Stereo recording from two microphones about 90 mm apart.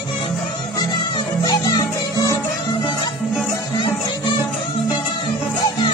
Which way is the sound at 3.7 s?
65° left (ahead or behind).